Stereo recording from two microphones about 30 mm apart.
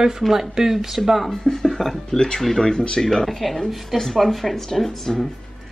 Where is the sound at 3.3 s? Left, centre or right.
Centre.